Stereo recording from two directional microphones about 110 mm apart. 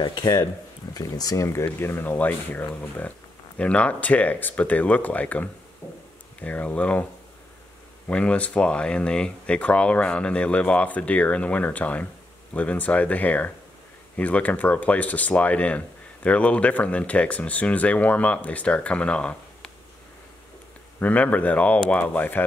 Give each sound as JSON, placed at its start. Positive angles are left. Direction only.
{"t": 0.0, "sound": "speech", "side_deg": 40}
{"t": 8.1, "sound": "speech", "side_deg": 10}
{"t": 21.0, "sound": "speech", "side_deg": 15}